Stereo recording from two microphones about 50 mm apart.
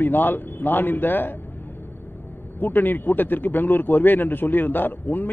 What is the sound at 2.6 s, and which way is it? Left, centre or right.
A man's voice, left.